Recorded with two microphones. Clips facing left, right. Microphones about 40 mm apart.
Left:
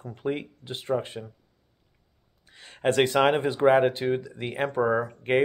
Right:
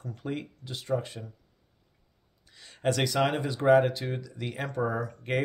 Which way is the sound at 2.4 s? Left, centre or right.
Left.